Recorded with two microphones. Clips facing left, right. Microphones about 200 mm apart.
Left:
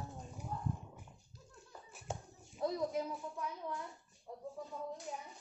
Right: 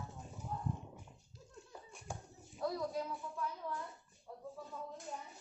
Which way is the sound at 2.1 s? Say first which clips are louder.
Left 4 dB; 20° left (ahead or behind).